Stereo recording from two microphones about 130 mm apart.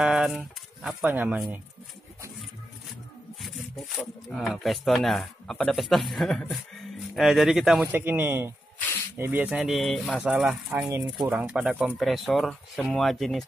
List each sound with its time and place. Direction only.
0.0 s a sound: 5° right (ahead or behind)
1.0 s speech: 15° right (ahead or behind)
3.4 s speech: centre (ahead or behind)
7.9 s speech: 15° right (ahead or behind); by 13.5 s centre (ahead or behind)